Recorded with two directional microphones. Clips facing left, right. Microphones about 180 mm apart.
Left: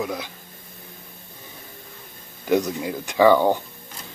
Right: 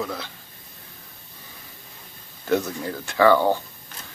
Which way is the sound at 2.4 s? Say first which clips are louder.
Left 2 dB; 15° left (ahead or behind).